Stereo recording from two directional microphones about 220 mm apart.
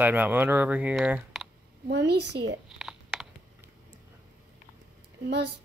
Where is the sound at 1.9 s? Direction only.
50° right (ahead or behind).